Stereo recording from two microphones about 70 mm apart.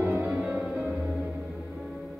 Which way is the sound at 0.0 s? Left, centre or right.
Right.